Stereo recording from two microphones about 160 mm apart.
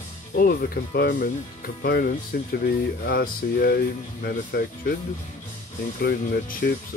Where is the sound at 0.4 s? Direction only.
65° left (ahead or behind).